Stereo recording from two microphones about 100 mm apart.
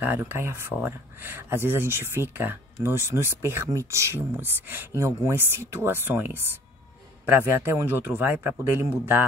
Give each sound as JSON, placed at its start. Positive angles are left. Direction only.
{"t": 0.0, "sound": "speech", "side_deg": -20}